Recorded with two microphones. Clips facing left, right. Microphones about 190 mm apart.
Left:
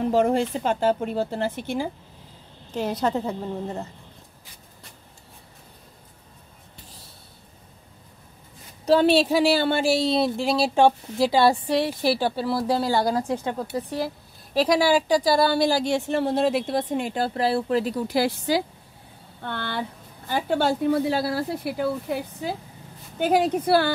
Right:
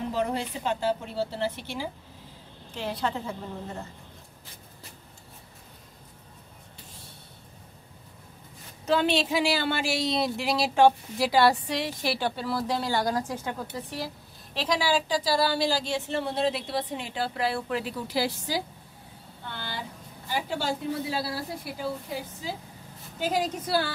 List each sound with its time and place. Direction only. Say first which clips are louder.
0.0 s speech: left 8 dB; 50° left (ahead or behind)
8.8 s speech: left 7 dB; 35° left (ahead or behind)
14.5 s a woman's voice: left 8 dB; 45° left (ahead or behind)
15.2 s speech: left 5 dB; 55° left (ahead or behind)